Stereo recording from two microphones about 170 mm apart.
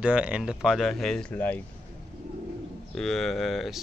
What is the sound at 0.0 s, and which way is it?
Speech, 5° right (ahead or behind).